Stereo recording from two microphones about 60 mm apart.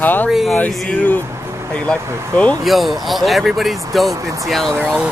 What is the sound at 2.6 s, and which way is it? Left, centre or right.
Speech, centre.